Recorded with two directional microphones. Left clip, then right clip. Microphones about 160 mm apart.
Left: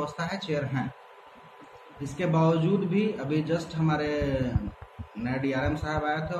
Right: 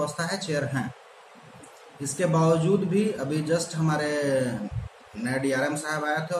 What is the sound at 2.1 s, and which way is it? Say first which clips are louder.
A man's voice: right 3 dB; 15° right (ahead or behind).